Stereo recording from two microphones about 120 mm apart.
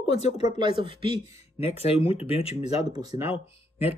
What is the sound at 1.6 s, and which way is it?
Speech, 55° left (ahead or behind).